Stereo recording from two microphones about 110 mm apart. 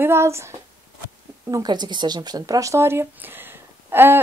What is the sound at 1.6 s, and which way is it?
Speech, 40° right (ahead or behind).